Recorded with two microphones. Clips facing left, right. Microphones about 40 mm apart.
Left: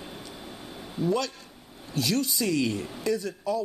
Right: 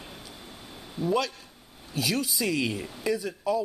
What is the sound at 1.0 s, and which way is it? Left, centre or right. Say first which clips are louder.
A man's voice: even; centre.